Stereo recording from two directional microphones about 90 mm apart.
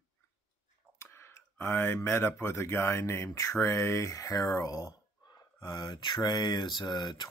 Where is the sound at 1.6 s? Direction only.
25° left (ahead or behind); by 4.9 s 45° left (ahead or behind).